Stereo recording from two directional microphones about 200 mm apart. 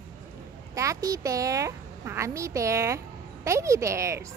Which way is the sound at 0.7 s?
15° right (ahead or behind).